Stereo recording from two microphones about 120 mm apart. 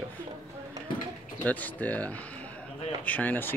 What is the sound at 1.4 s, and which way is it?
Speech, 15° left (ahead or behind).